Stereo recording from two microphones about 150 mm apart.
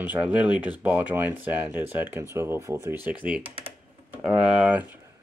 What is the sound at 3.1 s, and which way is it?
Speech, 10° right (ahead or behind).